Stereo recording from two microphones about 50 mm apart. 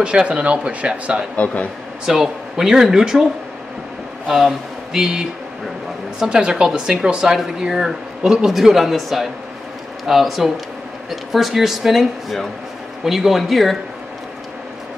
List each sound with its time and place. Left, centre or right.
0.0 s speech: centre
1.3 s a man's voice: left
2.0 s speech: centre
4.3 s speech: centre
4.9 s speech: centre
6.2 s speech: centre